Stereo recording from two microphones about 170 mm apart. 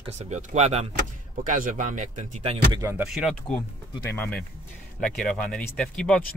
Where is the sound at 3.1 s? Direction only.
Centre (ahead or behind).